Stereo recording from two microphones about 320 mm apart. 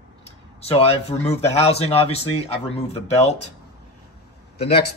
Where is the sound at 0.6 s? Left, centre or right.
Centre.